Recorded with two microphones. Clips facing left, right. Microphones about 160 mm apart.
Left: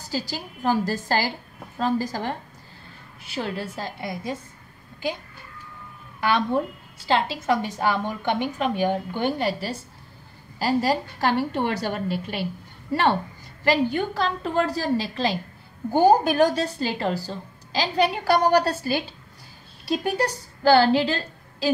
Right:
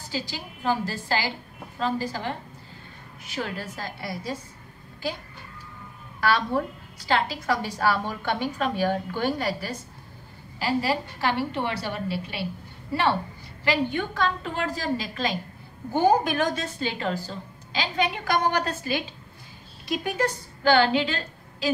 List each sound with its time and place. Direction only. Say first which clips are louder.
0.1 s a woman's voice: left 3 dB; 40° left (ahead or behind)
3.3 s a woman's voice: left 3 dB; 30° left (ahead or behind)
6.2 s a woman's voice: left 2 dB; 20° left (ahead or behind)
10.6 s a woman's voice: left 3 dB; 40° left (ahead or behind)
13.7 s a woman's voice: left 4 dB; 35° left (ahead or behind)